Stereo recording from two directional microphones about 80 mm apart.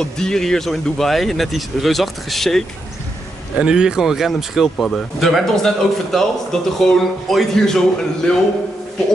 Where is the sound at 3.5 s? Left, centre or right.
Centre.